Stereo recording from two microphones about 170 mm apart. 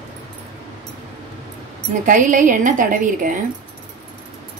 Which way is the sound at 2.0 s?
50° right (ahead or behind).